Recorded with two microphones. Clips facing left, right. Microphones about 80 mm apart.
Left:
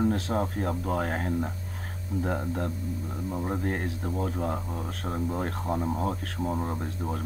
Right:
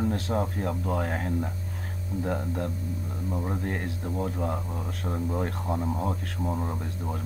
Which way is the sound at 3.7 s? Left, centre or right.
Left.